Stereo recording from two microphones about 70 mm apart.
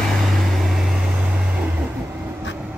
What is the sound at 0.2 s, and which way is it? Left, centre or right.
Vehicle, centre.